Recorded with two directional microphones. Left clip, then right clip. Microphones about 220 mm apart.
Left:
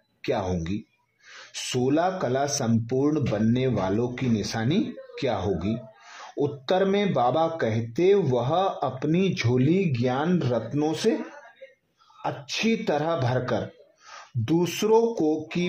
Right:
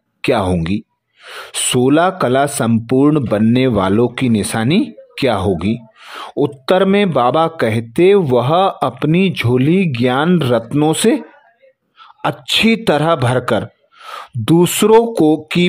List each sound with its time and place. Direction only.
0.2 s speech: 35° right (ahead or behind)
12.2 s speech: 40° right (ahead or behind)